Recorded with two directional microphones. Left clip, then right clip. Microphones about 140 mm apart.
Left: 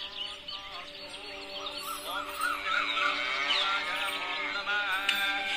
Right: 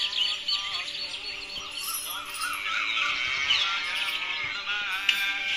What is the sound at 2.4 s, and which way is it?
Music, 65° left (ahead or behind).